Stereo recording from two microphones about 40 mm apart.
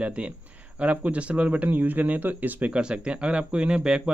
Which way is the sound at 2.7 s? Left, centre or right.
Right.